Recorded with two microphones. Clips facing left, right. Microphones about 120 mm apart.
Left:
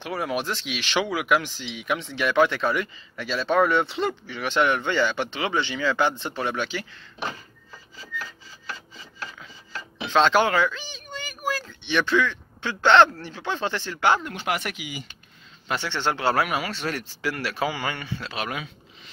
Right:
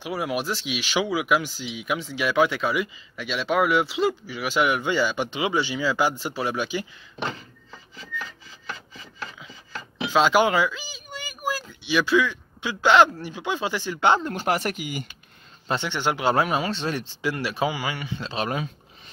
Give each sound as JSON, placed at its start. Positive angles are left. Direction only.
{"t": 0.0, "sound": "speech", "side_deg": -5}
{"t": 9.9, "sound": "speech", "side_deg": -5}
{"t": 14.3, "sound": "speech", "side_deg": -40}
{"t": 15.7, "sound": "speech", "side_deg": -15}
{"t": 16.4, "sound": "speech", "side_deg": -25}